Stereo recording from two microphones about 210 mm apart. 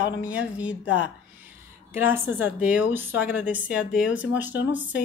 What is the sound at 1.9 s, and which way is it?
A woman's voice, 10° right (ahead or behind).